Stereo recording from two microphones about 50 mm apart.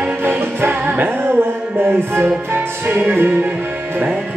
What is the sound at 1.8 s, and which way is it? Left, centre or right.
Music, right.